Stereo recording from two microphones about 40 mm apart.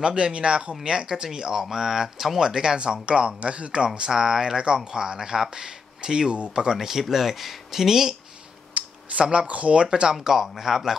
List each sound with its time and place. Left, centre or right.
0.0 s speech: right
4.1 s speech: centre
8.8 s computer keyboard: right
9.1 s speech: right
9.8 s speech: centre
10.1 s speech: centre